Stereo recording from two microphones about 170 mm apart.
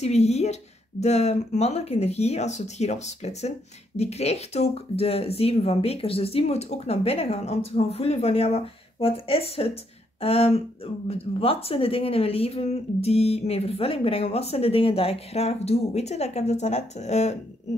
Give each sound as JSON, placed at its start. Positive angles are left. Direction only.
{"t": 0.0, "sound": "speech", "side_deg": 40}